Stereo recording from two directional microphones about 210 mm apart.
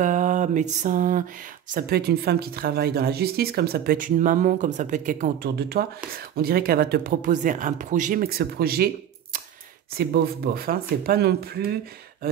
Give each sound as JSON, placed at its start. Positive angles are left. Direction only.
{"t": 0.0, "sound": "mantra", "side_deg": -35}
{"t": 1.7, "sound": "speech", "side_deg": -45}